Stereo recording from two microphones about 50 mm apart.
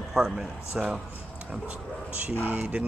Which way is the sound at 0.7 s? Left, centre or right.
Right.